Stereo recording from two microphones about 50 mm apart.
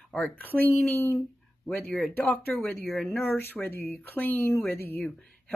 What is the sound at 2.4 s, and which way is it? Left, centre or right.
Speech, left.